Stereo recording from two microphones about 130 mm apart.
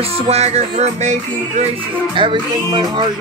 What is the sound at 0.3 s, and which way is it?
Music, 55° right (ahead or behind).